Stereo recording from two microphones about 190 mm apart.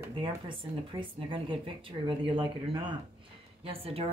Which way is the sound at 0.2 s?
25° right (ahead or behind).